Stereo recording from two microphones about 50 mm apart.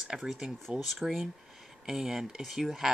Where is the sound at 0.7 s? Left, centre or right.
Centre.